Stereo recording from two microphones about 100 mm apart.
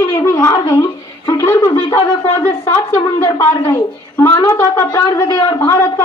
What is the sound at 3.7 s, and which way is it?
Speech, 20° left (ahead or behind).